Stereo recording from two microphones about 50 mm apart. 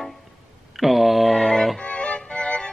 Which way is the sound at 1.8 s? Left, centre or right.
Left.